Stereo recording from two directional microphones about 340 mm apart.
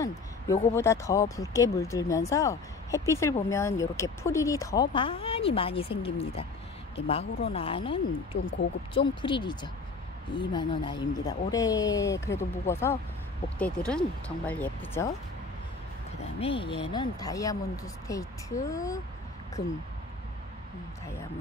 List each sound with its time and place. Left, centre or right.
0.0 s speech: centre
16.3 s speech: centre
19.6 s speech: left